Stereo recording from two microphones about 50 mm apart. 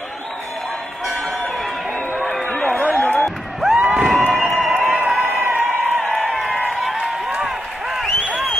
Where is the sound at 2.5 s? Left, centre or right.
Left.